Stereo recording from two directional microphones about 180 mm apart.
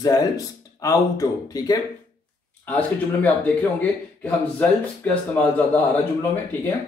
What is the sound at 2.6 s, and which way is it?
Speech, 10° left (ahead or behind).